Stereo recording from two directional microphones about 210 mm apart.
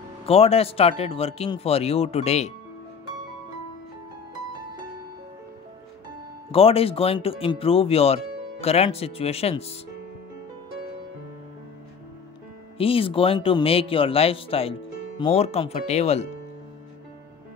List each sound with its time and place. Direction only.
0.3 s speech: 30° left (ahead or behind)
6.5 s speech: 25° left (ahead or behind)
12.7 s speech: 25° left (ahead or behind)